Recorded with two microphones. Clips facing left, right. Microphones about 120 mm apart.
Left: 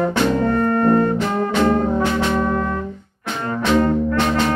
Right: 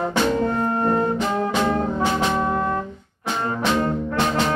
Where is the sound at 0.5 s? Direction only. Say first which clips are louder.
Left 5 dB; 20° right (ahead or behind).